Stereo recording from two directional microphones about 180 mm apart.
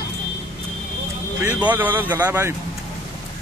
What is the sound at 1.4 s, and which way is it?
Speech, 10° right (ahead or behind).